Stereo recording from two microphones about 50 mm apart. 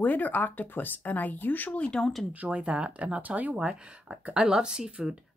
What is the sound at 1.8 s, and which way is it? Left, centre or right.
Speech, left.